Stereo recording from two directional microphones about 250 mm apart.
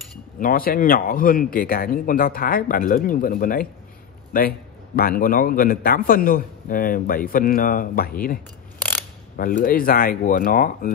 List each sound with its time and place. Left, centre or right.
0.4 s a man's voice: left
9.4 s speech: left